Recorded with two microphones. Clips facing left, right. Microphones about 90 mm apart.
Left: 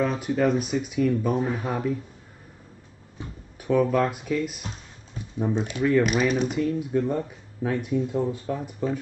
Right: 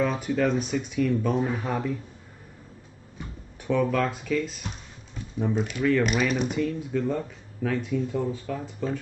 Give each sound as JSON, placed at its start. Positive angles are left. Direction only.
{"t": 0.0, "sound": "speech", "side_deg": 5}
{"t": 3.6, "sound": "speech", "side_deg": 5}
{"t": 5.4, "sound": "speech", "side_deg": 25}
{"t": 6.0, "sound": "speech", "side_deg": 0}
{"t": 6.9, "sound": "speech", "side_deg": 20}